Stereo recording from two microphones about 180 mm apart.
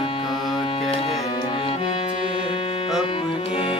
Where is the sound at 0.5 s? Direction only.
30° left (ahead or behind).